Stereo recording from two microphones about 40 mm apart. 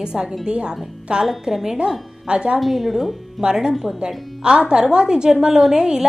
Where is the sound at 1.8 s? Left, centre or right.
Right.